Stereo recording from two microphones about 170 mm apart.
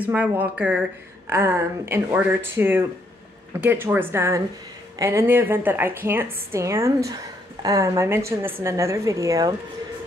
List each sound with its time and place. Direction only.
0.0 s a woman's voice: 10° right (ahead or behind)